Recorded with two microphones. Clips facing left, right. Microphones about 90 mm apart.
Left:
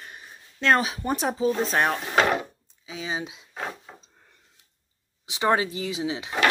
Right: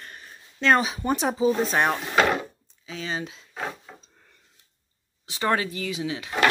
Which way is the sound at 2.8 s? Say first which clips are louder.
Even; 10° left (ahead or behind).